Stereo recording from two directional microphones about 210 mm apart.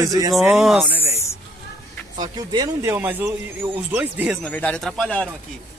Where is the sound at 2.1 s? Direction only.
20° right (ahead or behind).